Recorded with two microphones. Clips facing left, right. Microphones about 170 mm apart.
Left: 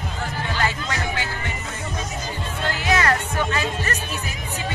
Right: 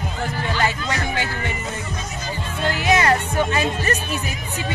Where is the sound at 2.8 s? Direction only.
20° right (ahead or behind).